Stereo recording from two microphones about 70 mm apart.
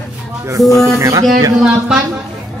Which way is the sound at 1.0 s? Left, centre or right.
Right.